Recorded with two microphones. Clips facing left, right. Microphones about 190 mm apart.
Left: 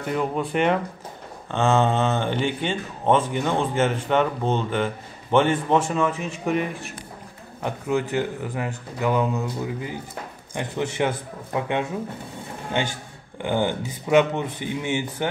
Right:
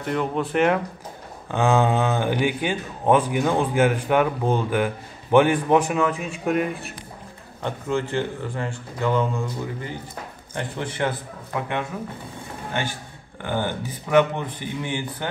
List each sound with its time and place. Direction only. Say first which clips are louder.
0.0 s speech: even; centre (ahead or behind)
1.5 s speech: right 1 dB; 15° right (ahead or behind)
6.2 s speech: right 1 dB; centre (ahead or behind); by 11.7 s 20° left (ahead or behind)
13.4 s speech: left 3 dB; 15° left (ahead or behind)